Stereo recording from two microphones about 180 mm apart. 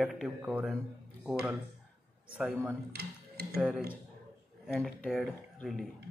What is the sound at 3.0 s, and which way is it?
Speech, 60° right (ahead or behind).